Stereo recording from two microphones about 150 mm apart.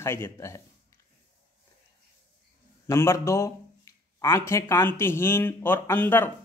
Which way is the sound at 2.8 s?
20° left (ahead or behind).